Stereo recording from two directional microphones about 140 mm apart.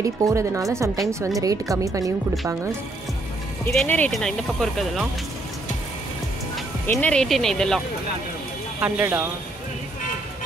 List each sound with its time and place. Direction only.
0.0 s speech: 20° right (ahead or behind)
3.8 s speech: 10° left (ahead or behind)
6.9 s speech: 10° left (ahead or behind)
8.8 s speech: 10° right (ahead or behind)